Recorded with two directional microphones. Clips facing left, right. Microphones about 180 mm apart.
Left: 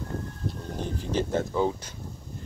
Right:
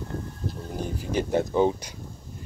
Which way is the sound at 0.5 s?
10° right (ahead or behind).